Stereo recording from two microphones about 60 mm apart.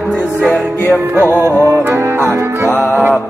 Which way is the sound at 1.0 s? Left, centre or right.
Right.